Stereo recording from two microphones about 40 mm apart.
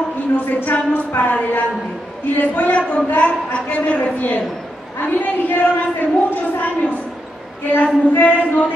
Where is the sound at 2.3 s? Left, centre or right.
Left.